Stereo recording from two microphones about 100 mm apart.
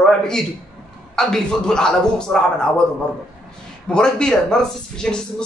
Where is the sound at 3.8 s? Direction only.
10° left (ahead or behind).